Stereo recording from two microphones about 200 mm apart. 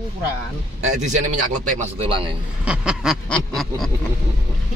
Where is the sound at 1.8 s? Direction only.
30° right (ahead or behind).